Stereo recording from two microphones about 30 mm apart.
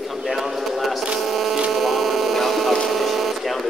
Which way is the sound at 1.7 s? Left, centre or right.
Centre.